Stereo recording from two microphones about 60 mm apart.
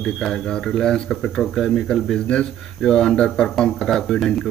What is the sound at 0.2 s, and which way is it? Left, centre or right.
Speech, centre.